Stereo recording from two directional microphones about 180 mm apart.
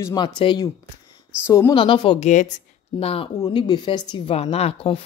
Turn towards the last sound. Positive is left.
turn(degrees=35)  # may be behind; listen again after turning